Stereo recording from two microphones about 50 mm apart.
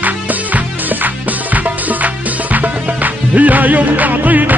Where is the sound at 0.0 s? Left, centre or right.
Right.